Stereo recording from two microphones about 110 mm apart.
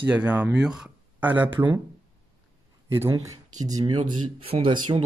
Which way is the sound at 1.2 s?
15° right (ahead or behind).